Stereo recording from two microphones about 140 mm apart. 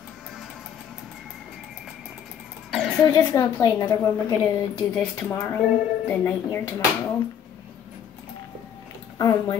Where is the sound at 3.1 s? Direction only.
30° left (ahead or behind).